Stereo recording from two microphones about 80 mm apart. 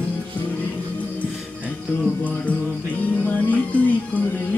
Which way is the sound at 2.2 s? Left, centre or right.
Centre.